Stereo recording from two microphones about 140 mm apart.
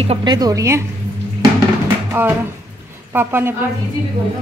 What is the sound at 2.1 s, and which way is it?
A woman's voice, 15° right (ahead or behind).